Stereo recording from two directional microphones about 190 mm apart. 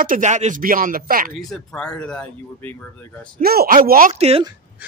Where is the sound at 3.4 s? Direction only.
55° right (ahead or behind).